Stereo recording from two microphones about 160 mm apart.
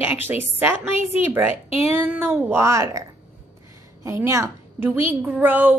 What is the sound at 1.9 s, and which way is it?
A woman's voice, 15° right (ahead or behind).